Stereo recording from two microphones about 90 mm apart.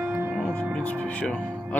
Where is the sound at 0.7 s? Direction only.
15° left (ahead or behind).